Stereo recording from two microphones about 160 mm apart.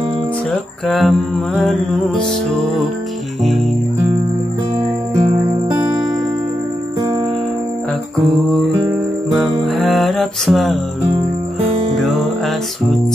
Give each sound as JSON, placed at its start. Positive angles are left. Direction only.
{"t": 0.8, "sound": "music", "side_deg": 5}
{"t": 9.3, "sound": "music", "side_deg": 0}
{"t": 11.1, "sound": "music", "side_deg": -40}